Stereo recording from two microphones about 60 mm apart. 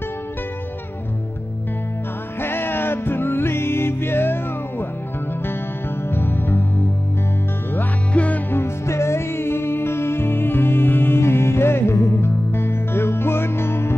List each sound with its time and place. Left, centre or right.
2.4 s music: left
6.0 s music: left
8.1 s music: left
8.5 s music: left